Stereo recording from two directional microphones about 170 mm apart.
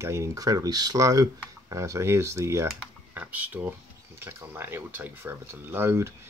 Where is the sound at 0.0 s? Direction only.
15° right (ahead or behind).